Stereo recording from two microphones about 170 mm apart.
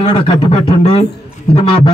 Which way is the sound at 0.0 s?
30° left (ahead or behind).